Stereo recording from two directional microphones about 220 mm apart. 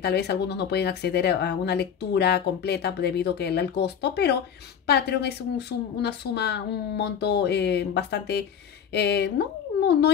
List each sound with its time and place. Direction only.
0.0 s speech: 50° left (ahead or behind)